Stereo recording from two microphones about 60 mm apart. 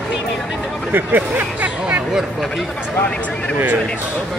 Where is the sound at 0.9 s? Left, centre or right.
Right.